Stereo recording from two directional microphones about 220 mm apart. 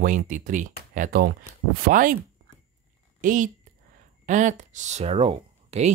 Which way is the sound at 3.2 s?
35° right (ahead or behind).